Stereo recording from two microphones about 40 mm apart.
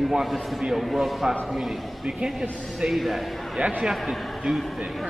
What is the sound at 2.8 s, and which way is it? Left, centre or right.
A man's voice, centre.